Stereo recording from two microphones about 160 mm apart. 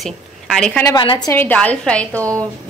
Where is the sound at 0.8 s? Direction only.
30° left (ahead or behind).